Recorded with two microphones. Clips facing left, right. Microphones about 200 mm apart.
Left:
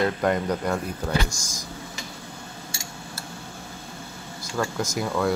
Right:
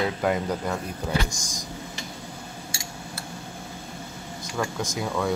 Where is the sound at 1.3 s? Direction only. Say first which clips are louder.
Right 1 dB; 15° right (ahead or behind).